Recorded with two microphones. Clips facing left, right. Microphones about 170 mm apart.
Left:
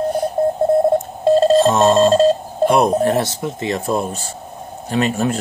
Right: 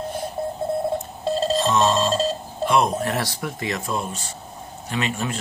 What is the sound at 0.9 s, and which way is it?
Telephone dialing, 50° left (ahead or behind).